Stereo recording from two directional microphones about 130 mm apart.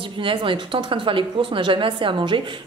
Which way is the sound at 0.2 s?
40° right (ahead or behind).